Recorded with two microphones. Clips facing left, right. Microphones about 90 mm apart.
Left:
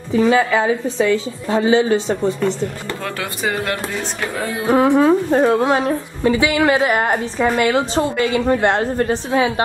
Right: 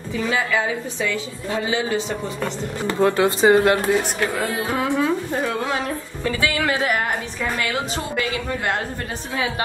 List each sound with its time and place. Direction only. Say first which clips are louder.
0.1 s a woman's voice: left 8 dB; 35° left (ahead or behind)
2.9 s speech: right 8 dB; 25° right (ahead or behind)
4.6 s a woman's voice: left 11 dB; 35° left (ahead or behind)
6.2 s a woman's voice: left 7 dB; 20° left (ahead or behind)